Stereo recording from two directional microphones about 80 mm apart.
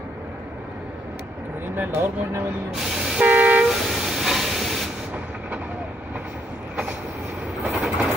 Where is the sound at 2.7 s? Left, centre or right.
Centre.